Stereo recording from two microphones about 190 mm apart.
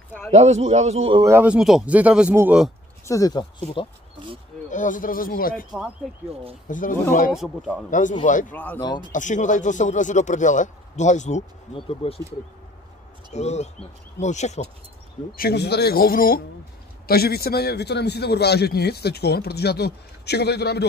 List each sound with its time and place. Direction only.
0.3 s a man's voice: 35° right (ahead or behind)
1.2 s speech: 10° right (ahead or behind)
3.1 s speech: 20° left (ahead or behind)
4.6 s a man's voice: 40° left (ahead or behind)
5.7 s a man's voice: centre (ahead or behind)
6.7 s a man's voice: 45° left (ahead or behind)
7.3 s a man's voice: centre (ahead or behind)
7.9 s a man's voice: 40° left (ahead or behind)
8.5 s speech: 10° left (ahead or behind)
9.1 s speech: 40° left (ahead or behind)
13.3 s speech: 35° left (ahead or behind)
15.3 s a man's voice: 55° left (ahead or behind)